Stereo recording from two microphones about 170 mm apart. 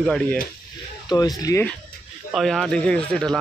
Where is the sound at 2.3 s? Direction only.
Centre (ahead or behind).